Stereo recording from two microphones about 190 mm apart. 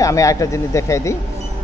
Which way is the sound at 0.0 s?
15° left (ahead or behind).